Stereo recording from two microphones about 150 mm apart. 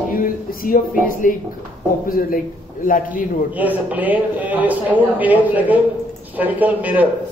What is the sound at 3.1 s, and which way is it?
A man's voice, 10° right (ahead or behind).